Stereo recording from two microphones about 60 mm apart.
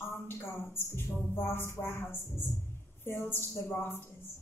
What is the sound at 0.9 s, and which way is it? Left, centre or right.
Speech, left.